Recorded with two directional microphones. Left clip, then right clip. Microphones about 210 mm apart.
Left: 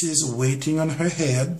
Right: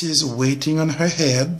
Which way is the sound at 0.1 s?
40° right (ahead or behind).